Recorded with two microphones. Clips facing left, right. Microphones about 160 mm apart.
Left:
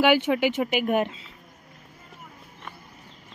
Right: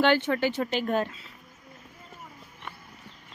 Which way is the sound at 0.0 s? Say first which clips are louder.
Left 3 dB; 10° left (ahead or behind).